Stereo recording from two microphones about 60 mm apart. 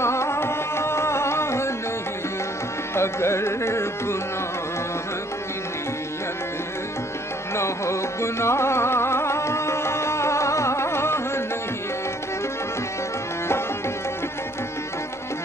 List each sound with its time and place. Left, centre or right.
0.0 s carnatic music: left
2.9 s music: left
7.5 s music: left